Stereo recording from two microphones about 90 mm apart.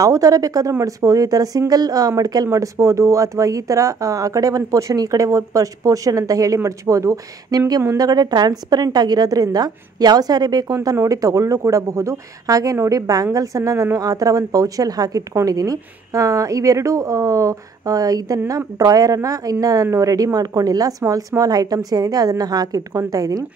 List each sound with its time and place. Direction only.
0.0 s speech: 40° right (ahead or behind)